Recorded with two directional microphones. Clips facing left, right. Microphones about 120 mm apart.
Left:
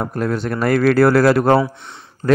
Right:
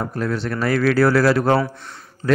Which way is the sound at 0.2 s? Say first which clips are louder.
Left 3 dB; 45° left (ahead or behind).